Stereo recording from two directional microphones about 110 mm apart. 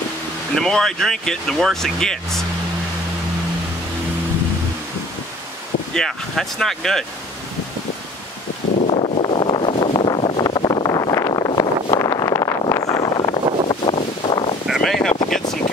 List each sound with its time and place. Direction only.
0.6 s speech: 5° left (ahead or behind)
5.9 s speech: 5° left (ahead or behind)
8.7 s wind noise: 65° left (ahead or behind); by 13.9 s 45° left (ahead or behind)
14.7 s wind noise: 5° left (ahead or behind)